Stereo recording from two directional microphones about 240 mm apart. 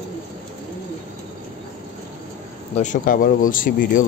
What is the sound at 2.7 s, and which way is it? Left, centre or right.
Speech, left.